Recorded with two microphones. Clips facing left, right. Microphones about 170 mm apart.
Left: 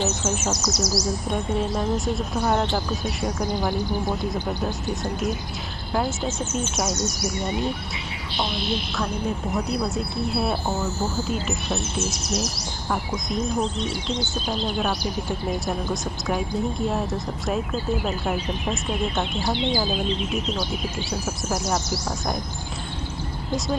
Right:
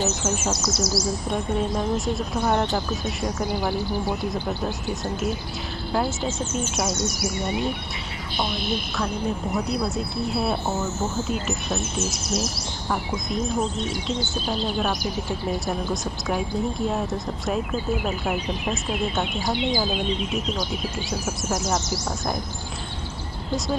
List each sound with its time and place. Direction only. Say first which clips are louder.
0.0 s speech: even; 5° right (ahead or behind)
0.7 s speech: even; 25° right (ahead or behind)
1.3 s speech: even; centre (ahead or behind)
3.7 s speech: even; 15° left (ahead or behind)
6.9 s speech: even; 30° right (ahead or behind)
8.9 s speech: even; centre (ahead or behind)
12.9 s speech: even; centre (ahead or behind)
19.4 s speech: even; 10° right (ahead or behind)
21.1 s speech: right 1 dB; centre (ahead or behind)